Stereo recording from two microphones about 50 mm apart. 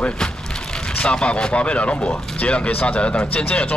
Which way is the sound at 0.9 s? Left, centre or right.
Left.